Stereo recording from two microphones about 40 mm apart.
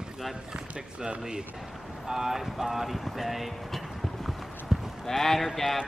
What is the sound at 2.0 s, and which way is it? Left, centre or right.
Speech, centre.